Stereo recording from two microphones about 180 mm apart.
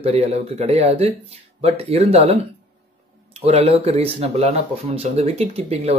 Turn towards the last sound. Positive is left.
turn(degrees=-35)  # may be behind; listen again after turning